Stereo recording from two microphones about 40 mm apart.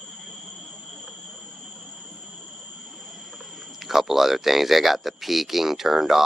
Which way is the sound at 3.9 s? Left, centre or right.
Centre.